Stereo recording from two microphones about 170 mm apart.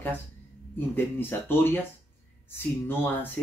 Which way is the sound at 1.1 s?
10° left (ahead or behind).